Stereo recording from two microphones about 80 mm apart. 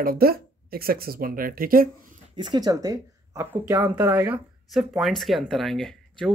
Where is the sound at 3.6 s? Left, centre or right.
Right.